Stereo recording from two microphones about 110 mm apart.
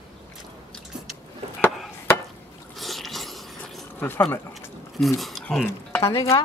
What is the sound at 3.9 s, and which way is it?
Speech, 20° left (ahead or behind).